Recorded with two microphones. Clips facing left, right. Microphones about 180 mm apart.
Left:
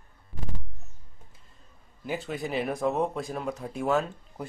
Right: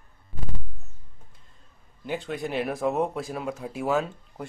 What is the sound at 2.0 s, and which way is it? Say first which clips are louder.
Speech: right 2 dB; centre (ahead or behind).